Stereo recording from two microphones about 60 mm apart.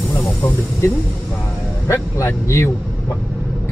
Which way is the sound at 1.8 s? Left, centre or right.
Left.